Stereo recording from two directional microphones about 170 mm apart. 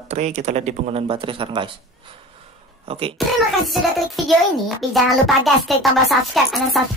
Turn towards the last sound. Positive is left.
turn(degrees=0)  # may be behind; listen again after turning